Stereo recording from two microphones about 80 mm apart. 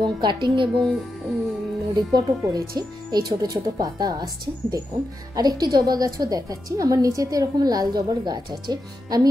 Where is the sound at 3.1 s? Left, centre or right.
Right.